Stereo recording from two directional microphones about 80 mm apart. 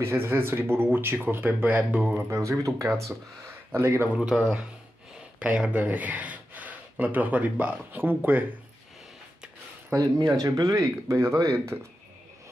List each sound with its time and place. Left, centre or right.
0.0 s speech: right
2.2 s speech: right
4.1 s speech: centre
9.9 s speech: right